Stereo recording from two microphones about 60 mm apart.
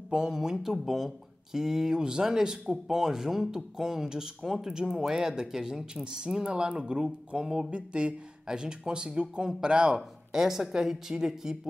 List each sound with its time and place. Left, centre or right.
0.1 s speech: centre